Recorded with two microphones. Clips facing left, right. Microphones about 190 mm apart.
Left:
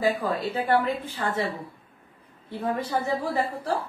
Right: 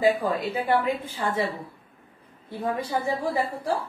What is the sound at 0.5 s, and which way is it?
Speech, 10° right (ahead or behind).